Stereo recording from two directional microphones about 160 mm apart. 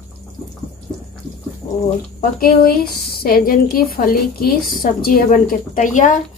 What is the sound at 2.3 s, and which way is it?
A woman's voice, 65° left (ahead or behind).